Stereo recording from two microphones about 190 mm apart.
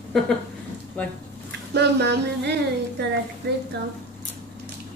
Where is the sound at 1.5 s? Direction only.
65° right (ahead or behind).